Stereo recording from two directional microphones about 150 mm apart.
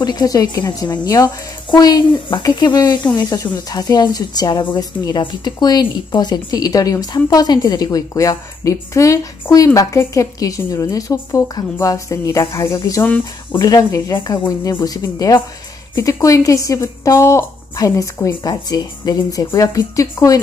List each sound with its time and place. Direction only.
0.0 s a woman's voice: 25° left (ahead or behind)